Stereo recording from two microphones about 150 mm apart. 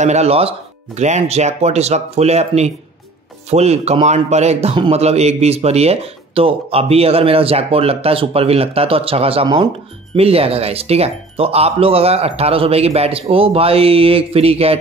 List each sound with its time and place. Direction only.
0.0 s speech: 50° right (ahead or behind)